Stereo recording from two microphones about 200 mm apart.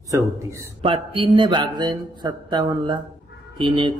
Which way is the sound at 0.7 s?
25° right (ahead or behind).